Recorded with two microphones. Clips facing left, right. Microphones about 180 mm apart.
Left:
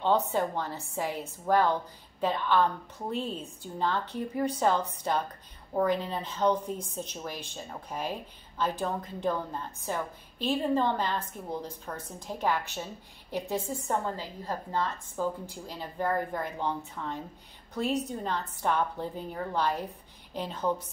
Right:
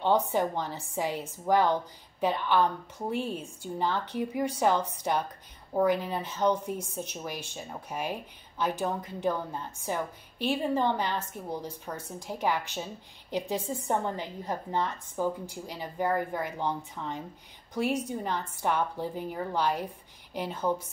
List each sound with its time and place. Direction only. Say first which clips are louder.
0.0 s speech: right 1 dB; 15° right (ahead or behind)